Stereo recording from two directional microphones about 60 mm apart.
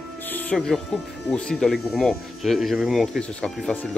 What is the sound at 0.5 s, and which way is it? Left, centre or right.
Speech, centre.